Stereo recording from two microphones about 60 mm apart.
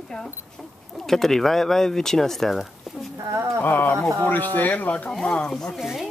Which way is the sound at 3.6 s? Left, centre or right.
Left.